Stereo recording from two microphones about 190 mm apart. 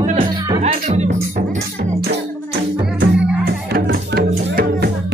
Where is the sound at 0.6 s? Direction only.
40° right (ahead or behind).